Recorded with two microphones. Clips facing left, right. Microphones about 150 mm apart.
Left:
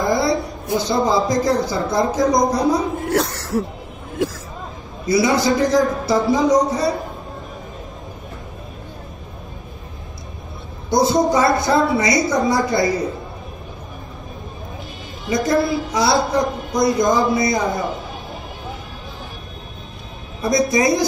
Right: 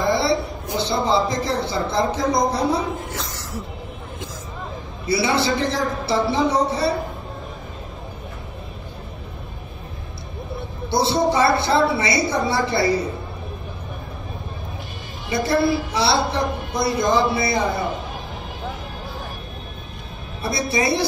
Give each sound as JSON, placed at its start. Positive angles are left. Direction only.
{"t": 0.1, "sound": "a man's voice", "side_deg": -30}
{"t": 3.1, "sound": "speech", "side_deg": 65}
{"t": 5.0, "sound": "a woman's voice", "side_deg": -30}
{"t": 10.9, "sound": "a woman's voice", "side_deg": -30}
{"t": 15.3, "sound": "a woman's voice", "side_deg": -30}
{"t": 20.4, "sound": "a woman's voice", "side_deg": -30}